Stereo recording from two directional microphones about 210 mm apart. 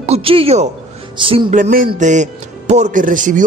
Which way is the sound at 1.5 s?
40° right (ahead or behind).